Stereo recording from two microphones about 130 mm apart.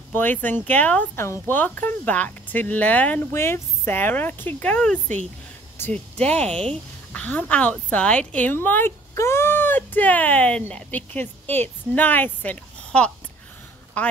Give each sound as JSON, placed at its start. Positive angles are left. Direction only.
{"t": 0.1, "sound": "speech", "side_deg": 15}